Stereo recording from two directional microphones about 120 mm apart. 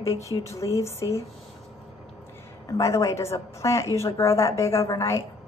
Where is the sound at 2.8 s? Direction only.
25° left (ahead or behind).